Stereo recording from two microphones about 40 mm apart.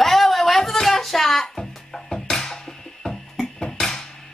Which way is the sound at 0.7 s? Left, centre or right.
Centre.